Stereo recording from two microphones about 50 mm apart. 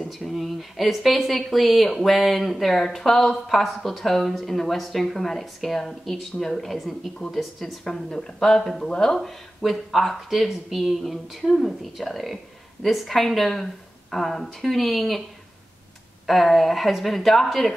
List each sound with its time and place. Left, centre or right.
0.2 s speech: centre
7.9 s speech: centre
9.1 s speech: centre
16.3 s speech: centre